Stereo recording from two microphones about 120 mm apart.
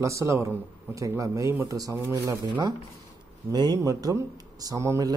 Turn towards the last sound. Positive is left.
turn(degrees=-25)  # may be behind; listen again after turning